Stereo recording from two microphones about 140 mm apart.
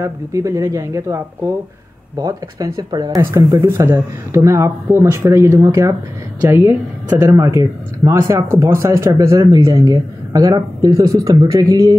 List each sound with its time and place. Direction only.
0.0 s speech: 20° right (ahead or behind)